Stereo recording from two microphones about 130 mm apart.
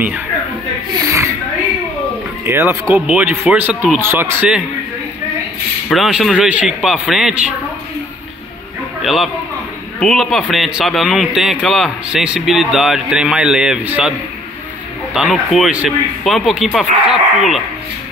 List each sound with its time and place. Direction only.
2.4 s speech: 20° right (ahead or behind)
5.9 s a man's voice: 5° right (ahead or behind)
9.0 s a man's voice: centre (ahead or behind)
15.1 s a man's voice: 5° right (ahead or behind)